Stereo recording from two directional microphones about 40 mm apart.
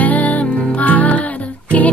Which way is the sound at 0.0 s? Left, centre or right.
Left.